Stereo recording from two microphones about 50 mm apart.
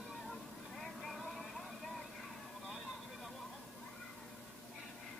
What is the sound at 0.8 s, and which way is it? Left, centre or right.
Vehicle, centre.